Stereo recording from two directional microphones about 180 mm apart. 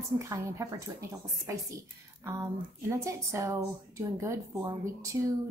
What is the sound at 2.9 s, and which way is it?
A woman's voice, 15° right (ahead or behind).